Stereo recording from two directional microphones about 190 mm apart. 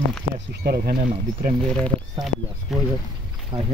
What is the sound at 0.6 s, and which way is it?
Speech, 50° right (ahead or behind).